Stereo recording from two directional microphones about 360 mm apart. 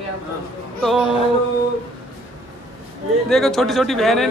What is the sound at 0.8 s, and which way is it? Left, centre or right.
Speech, centre.